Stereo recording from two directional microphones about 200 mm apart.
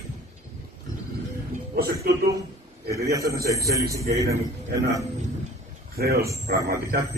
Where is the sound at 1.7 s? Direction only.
50° right (ahead or behind).